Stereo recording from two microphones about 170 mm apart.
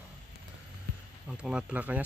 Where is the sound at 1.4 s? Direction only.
5° right (ahead or behind).